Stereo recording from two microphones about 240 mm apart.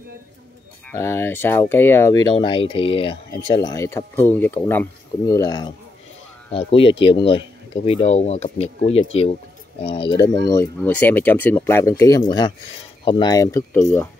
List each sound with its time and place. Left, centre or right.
0.8 s speech: centre